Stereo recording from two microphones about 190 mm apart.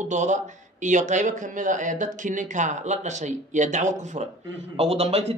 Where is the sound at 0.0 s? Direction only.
40° right (ahead or behind).